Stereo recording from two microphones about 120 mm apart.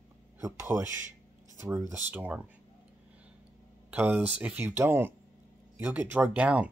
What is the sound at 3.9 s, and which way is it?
Speech, 15° right (ahead or behind).